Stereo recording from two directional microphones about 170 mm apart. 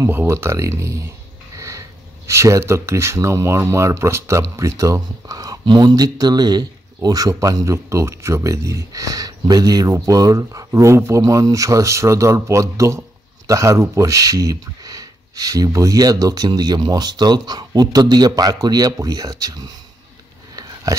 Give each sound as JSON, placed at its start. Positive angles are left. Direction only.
{"t": 0.0, "sound": "speech", "side_deg": -15}